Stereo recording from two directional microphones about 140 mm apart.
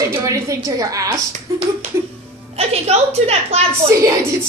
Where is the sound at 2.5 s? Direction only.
50° right (ahead or behind).